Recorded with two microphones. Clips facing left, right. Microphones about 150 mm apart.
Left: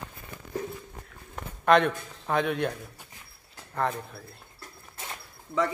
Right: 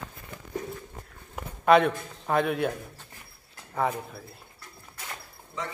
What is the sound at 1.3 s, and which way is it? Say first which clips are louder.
A man's voice: right 2 dB; 5° right (ahead or behind).